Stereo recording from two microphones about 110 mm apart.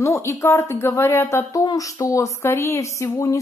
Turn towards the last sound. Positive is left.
turn(degrees=30)  # may be behind; listen again after turning